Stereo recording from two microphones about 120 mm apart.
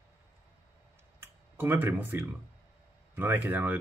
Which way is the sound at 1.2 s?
20° right (ahead or behind).